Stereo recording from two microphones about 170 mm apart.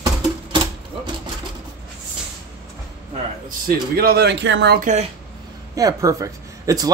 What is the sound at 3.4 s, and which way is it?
Speech, 60° right (ahead or behind).